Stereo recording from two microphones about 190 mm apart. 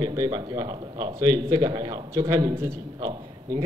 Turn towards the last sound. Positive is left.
turn(degrees=-20)  # may be behind; listen again after turning